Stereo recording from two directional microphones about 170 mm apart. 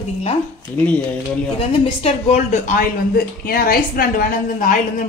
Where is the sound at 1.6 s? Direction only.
40° left (ahead or behind).